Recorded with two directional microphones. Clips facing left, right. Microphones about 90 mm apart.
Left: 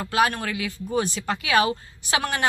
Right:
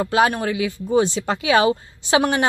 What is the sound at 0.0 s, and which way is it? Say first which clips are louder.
Speech: right 4 dB; 25° right (ahead or behind).